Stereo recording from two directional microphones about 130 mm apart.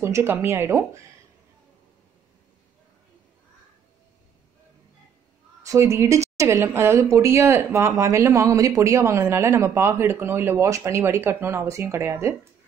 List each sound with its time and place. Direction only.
0.0 s speech: 20° right (ahead or behind)
5.7 s a woman's voice: 20° right (ahead or behind)